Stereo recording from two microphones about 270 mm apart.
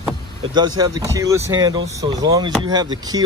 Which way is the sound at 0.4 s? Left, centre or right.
Centre.